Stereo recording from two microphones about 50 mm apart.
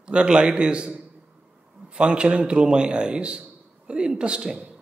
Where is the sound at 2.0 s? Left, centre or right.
Centre.